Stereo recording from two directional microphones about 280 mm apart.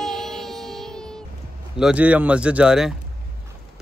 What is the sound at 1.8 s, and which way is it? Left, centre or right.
Speech, centre.